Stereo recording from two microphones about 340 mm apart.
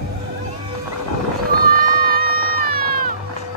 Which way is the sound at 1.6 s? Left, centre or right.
Right.